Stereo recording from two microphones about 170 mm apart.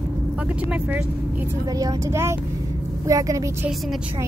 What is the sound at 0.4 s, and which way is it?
A woman's voice, 10° right (ahead or behind).